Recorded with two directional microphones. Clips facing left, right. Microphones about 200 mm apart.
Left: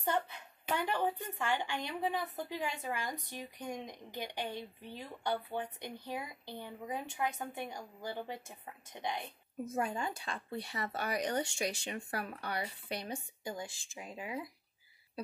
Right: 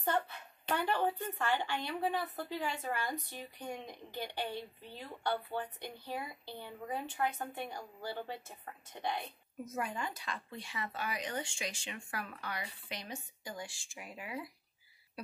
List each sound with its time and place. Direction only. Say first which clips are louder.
0.0 s speech: even; 15° left (ahead or behind)
9.7 s speech: left 3 dB; 25° left (ahead or behind)
10.7 s speech: left 2 dB; 40° left (ahead or behind); by 14.5 s 20° left (ahead or behind)